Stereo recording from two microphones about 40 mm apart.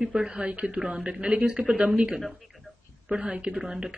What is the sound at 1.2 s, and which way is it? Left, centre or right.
Speech, right.